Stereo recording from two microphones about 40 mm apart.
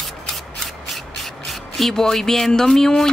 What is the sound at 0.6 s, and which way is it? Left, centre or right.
Rub, centre.